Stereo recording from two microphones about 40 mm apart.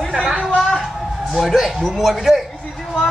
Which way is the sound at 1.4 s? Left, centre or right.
Centre.